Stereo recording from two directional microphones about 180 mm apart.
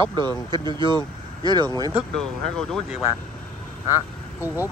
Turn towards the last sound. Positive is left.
turn(degrees=-10)  # may be behind; listen again after turning